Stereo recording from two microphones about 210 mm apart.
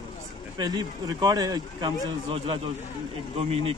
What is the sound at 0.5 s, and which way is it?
Speech, 20° right (ahead or behind).